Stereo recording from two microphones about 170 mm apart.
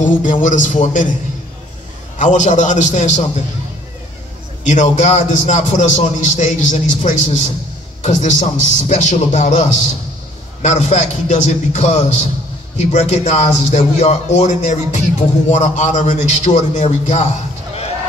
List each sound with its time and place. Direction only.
0.0 s a man's voice: 50° left (ahead or behind)
2.1 s a man's voice: 45° left (ahead or behind)
4.6 s a man's voice: 45° left (ahead or behind)